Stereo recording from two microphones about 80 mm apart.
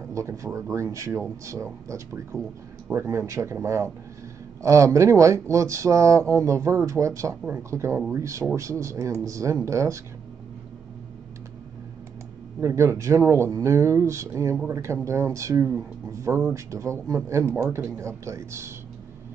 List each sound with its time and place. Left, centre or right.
0.1 s speech: right
12.5 s speech: right